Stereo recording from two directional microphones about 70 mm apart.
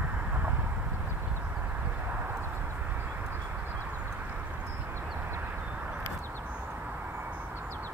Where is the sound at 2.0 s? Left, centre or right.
Right.